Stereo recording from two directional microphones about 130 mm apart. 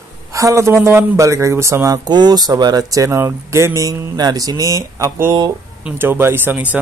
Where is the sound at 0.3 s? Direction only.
25° right (ahead or behind).